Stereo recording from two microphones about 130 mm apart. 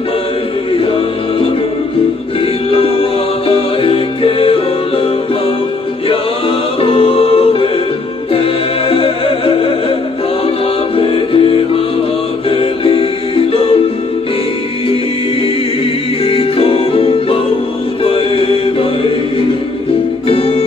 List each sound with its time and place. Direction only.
2.7 s music: 45° left (ahead or behind)
6.8 s music: 45° left (ahead or behind)
11.0 s music: 45° left (ahead or behind)
16.3 s music: 45° left (ahead or behind)
20.2 s music: 45° left (ahead or behind)